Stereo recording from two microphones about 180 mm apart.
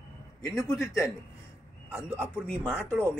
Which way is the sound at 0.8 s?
15° left (ahead or behind).